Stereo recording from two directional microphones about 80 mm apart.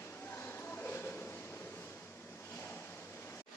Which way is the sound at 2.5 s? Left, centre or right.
Left.